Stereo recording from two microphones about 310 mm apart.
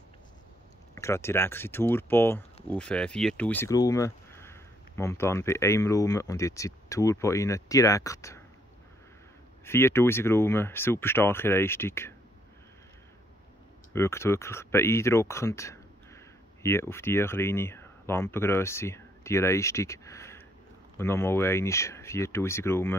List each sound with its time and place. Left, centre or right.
0.9 s speech: centre
9.7 s speech: centre
13.9 s speech: centre